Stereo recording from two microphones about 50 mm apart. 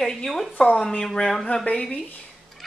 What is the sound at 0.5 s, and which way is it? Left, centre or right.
Speech, left.